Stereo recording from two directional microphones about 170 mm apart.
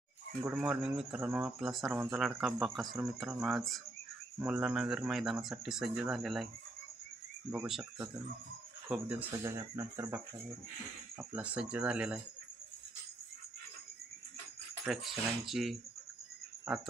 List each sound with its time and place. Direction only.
0.4 s speech: 10° right (ahead or behind)
7.6 s speech: centre (ahead or behind)
9.3 s speech: 20° right (ahead or behind)
14.9 s speech: centre (ahead or behind)